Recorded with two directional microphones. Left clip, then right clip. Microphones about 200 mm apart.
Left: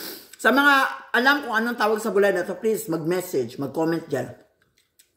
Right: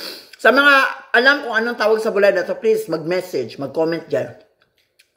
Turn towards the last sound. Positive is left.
turn(degrees=25)  # may be behind; listen again after turning